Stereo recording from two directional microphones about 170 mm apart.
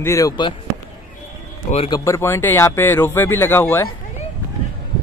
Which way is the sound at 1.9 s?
20° left (ahead or behind).